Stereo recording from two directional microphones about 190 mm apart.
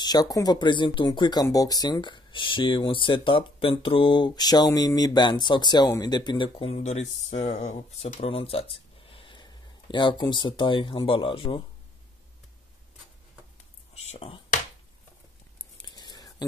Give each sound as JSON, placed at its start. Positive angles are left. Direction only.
{"t": 0.0, "sound": "speech", "side_deg": 20}
{"t": 13.9, "sound": "whispering", "side_deg": 30}
{"t": 15.8, "sound": "whispering", "side_deg": 20}